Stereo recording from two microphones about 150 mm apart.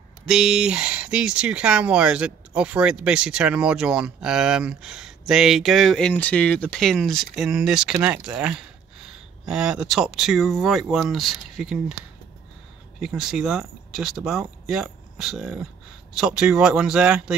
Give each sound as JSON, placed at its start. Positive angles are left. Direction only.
{"t": 0.3, "sound": "speech", "side_deg": -5}
{"t": 13.0, "sound": "speech", "side_deg": -5}